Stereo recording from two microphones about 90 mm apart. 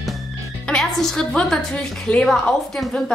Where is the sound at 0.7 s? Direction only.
5° left (ahead or behind).